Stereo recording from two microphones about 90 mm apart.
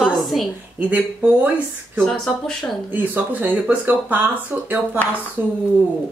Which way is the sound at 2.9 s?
20° right (ahead or behind).